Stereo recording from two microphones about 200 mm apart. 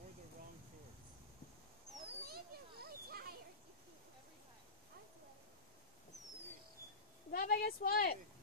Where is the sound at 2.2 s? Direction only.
50° right (ahead or behind).